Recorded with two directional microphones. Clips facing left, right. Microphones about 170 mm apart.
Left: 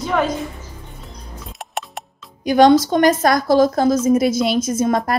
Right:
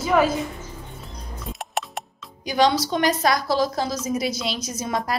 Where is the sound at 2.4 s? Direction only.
50° left (ahead or behind).